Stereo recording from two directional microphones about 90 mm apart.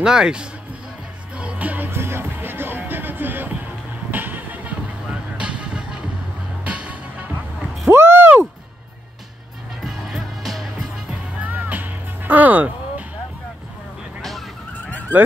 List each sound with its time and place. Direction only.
0.0 s speech: 5° right (ahead or behind)
1.3 s music: 15° right (ahead or behind)
7.9 s a sound: 25° right (ahead or behind)
9.8 s music: centre (ahead or behind)
11.3 s music: 20° right (ahead or behind)
14.9 s fowl: 20° left (ahead or behind)